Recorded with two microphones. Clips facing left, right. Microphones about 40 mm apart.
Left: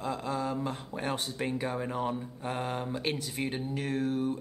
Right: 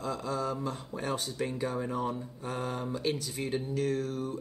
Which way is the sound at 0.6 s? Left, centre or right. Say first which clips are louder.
Left 1 dB; left.